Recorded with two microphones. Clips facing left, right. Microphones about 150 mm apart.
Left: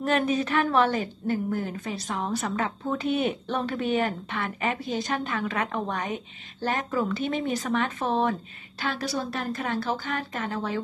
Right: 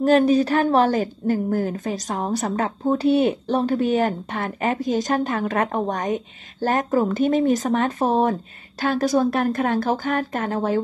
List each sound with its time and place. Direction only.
0.0 s a woman's voice: 35° right (ahead or behind)